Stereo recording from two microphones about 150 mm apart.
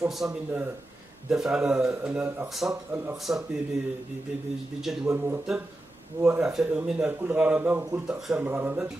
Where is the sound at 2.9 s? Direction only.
15° right (ahead or behind).